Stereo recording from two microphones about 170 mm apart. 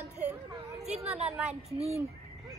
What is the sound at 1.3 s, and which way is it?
Speech, 5° right (ahead or behind).